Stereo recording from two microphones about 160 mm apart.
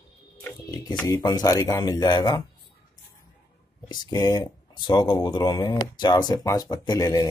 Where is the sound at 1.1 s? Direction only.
25° left (ahead or behind).